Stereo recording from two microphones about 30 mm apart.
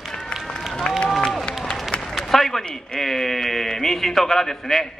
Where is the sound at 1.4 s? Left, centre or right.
Left.